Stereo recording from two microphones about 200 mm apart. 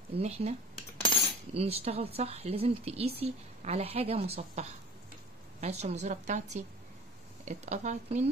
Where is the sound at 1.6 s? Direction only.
30° right (ahead or behind).